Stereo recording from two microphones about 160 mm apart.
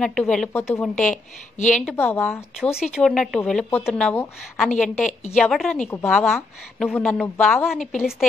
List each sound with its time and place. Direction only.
0.0 s a woman's voice: 5° left (ahead or behind)
1.1 s a woman's voice: 50° left (ahead or behind)
1.8 s a woman's voice: 5° left (ahead or behind)
4.9 s a woman's voice: 45° left (ahead or behind)
5.4 s a woman's voice: 5° left (ahead or behind)